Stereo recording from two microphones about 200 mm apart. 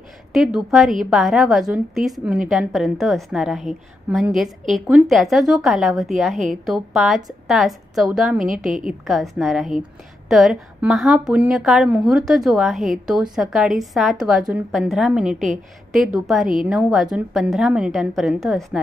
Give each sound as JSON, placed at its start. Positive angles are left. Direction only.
{"t": 0.3, "sound": "a woman's voice", "side_deg": 0}
{"t": 8.5, "sound": "a woman's voice", "side_deg": -40}
{"t": 9.0, "sound": "a woman's voice", "side_deg": 0}